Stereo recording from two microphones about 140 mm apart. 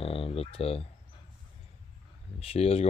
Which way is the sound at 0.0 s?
40° left (ahead or behind).